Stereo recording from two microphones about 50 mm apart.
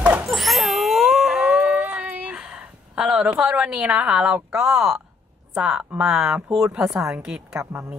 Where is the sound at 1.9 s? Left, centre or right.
Right.